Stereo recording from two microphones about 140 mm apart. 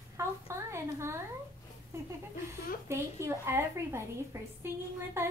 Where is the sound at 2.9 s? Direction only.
20° right (ahead or behind).